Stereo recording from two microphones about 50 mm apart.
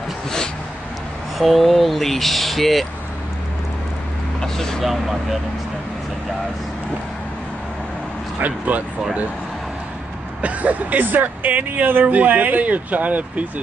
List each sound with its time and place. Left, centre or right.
1.4 s speech: centre
4.4 s vehicle: centre
4.8 s speech: centre
8.4 s speech: right
10.4 s speech: right